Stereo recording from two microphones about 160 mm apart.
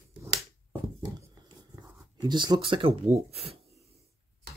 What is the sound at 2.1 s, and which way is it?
Speech, 30° right (ahead or behind).